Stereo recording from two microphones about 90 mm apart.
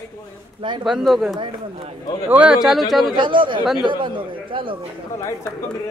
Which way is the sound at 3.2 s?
65° right (ahead or behind).